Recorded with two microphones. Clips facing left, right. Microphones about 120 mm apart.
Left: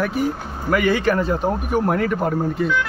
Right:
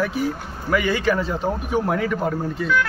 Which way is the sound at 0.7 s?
Centre (ahead or behind).